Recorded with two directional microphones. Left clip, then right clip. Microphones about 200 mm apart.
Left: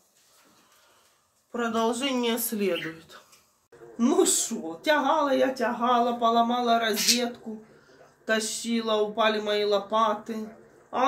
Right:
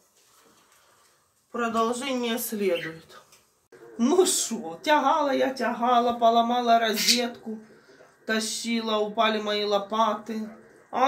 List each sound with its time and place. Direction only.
1.5 s speech: 10° left (ahead or behind)
2.1 s speech: 20° left (ahead or behind)
4.0 s speech: 5° right (ahead or behind)
8.3 s speech: centre (ahead or behind)